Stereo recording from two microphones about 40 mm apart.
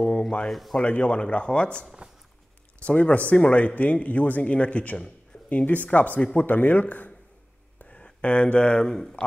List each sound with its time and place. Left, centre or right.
0.0 s a sound: left
0.5 s speech: centre
0.8 s a man's voice: left
5.3 s a sound: left
5.9 s speech: left
7.9 s speech: left